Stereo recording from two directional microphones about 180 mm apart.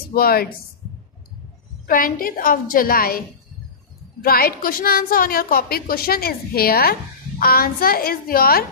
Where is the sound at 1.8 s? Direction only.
55° left (ahead or behind).